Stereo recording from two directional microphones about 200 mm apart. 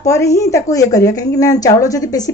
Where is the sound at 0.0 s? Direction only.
15° left (ahead or behind).